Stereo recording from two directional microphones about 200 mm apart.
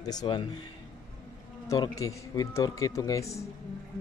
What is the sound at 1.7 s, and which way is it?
A man's voice, 15° left (ahead or behind).